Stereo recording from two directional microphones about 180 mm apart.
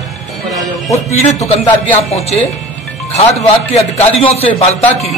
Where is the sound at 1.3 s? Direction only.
35° left (ahead or behind).